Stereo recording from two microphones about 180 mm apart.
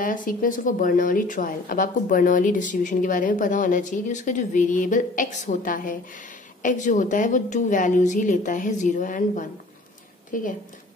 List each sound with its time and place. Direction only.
0.0 s speech: 50° left (ahead or behind)